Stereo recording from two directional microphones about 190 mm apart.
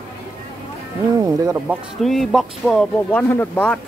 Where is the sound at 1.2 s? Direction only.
15° right (ahead or behind).